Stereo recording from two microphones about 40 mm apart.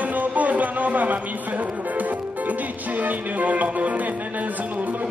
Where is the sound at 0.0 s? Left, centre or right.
Right.